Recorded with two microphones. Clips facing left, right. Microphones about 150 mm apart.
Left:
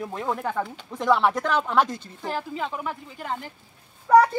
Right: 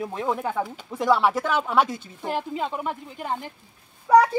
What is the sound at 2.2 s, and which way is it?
Speech, 15° right (ahead or behind).